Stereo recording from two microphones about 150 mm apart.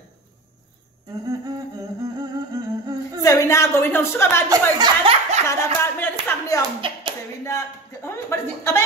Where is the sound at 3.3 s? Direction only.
20° left (ahead or behind).